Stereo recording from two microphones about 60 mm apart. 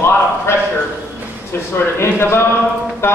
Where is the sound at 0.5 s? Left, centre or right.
Left.